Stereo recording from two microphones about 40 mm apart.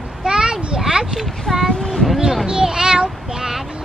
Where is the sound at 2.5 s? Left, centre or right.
Centre.